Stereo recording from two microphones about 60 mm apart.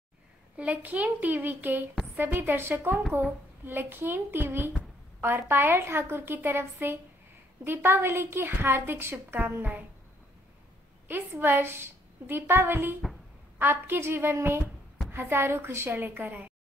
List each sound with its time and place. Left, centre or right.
0.6 s a woman's voice: right
11.1 s a woman's voice: right